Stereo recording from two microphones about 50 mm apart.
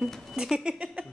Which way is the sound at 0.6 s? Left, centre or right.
Right.